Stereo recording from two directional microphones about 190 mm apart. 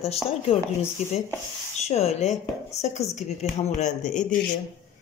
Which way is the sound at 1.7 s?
35° left (ahead or behind).